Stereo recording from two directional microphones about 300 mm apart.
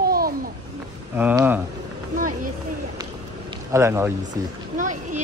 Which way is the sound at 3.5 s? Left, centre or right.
Centre.